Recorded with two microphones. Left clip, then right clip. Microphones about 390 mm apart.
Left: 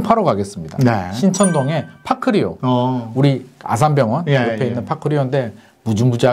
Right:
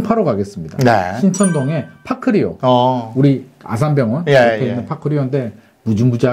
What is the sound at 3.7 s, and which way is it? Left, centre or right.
Speech, left.